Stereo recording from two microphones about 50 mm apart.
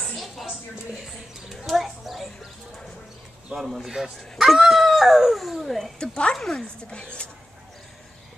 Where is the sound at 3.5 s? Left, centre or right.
Centre.